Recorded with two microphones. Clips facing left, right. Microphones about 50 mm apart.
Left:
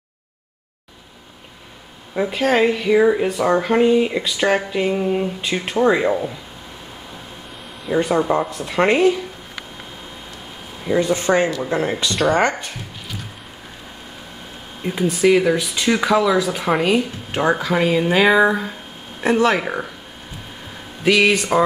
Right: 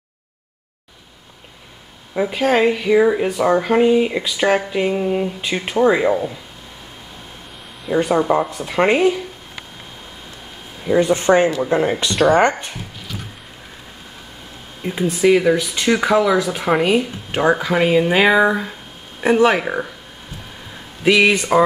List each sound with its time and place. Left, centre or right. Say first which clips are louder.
2.1 s speech: right 1 dB; centre
7.8 s speech: right 1 dB; centre
11.0 s speech: right 3 dB; right
11.7 s speech: right 3 dB; centre
14.8 s speech: even; centre
16.0 s speech: right 1 dB; centre
21.0 s speech: right 1 dB; centre